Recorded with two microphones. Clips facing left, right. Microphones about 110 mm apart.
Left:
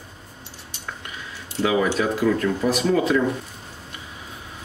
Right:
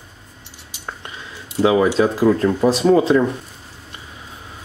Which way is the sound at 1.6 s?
30° right (ahead or behind).